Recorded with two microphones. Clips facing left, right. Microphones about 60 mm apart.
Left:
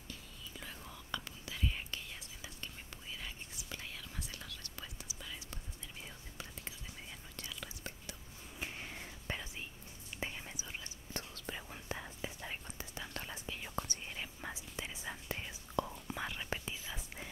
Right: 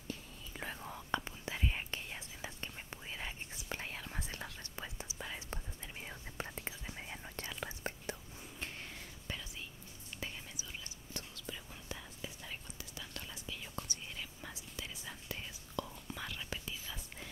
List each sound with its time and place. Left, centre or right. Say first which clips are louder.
0.1 s whispering: right 4 dB; right
8.5 s a sound: left 2 dB; centre
9.3 s whispering: left 3 dB; left
11.1 s whispering: left 3 dB; left; by 17.3 s centre